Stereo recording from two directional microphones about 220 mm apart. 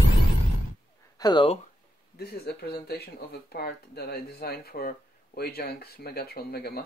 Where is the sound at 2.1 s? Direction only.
45° left (ahead or behind).